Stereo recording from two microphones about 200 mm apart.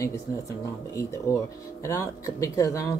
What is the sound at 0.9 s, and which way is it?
Speech, 15° left (ahead or behind).